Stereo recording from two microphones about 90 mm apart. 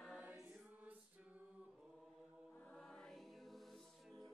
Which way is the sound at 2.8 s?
5° left (ahead or behind).